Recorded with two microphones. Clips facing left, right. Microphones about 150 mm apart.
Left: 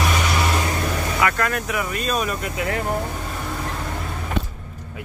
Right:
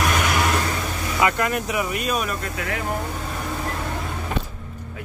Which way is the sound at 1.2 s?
20° right (ahead or behind).